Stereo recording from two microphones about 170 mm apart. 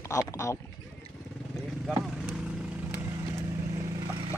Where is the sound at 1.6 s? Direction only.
Centre (ahead or behind).